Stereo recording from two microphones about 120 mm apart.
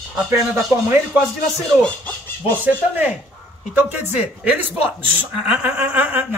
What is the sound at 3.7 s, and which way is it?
Speech, 15° right (ahead or behind).